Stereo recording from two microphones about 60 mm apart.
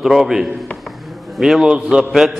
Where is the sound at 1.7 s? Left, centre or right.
Centre.